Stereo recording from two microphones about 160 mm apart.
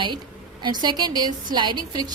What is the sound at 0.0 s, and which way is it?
A woman's voice, 30° right (ahead or behind).